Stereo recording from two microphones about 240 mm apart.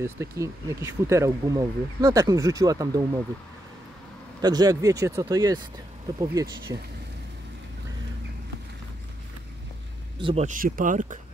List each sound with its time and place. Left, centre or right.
0.0 s speech: centre
4.4 s speech: centre
10.1 s speech: right